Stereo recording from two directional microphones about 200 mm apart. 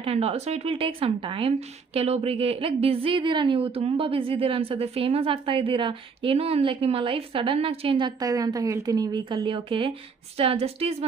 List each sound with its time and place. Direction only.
0.0 s speech: 30° right (ahead or behind)